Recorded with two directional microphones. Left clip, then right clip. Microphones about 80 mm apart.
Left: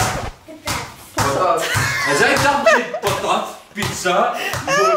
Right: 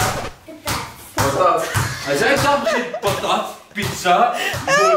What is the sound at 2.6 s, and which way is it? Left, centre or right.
Speech, left.